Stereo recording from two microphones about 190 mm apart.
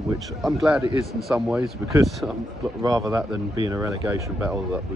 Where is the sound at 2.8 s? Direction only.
15° right (ahead or behind).